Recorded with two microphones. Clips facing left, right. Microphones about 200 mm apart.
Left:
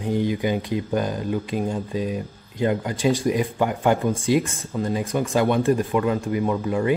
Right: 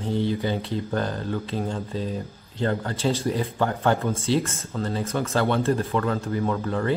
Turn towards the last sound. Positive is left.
turn(degrees=15)  # may be behind; listen again after turning